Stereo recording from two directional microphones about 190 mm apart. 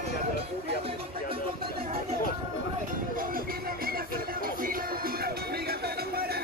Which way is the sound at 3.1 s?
50° right (ahead or behind).